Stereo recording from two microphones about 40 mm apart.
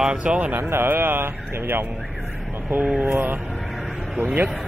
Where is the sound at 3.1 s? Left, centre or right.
Right.